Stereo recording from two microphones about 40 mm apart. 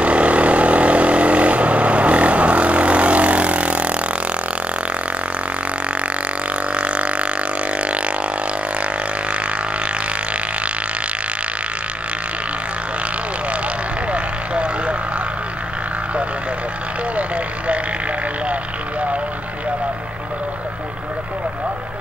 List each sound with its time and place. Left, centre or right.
0.0 s vehicle: right
6.7 s a sound: right
14.1 s vehicle: right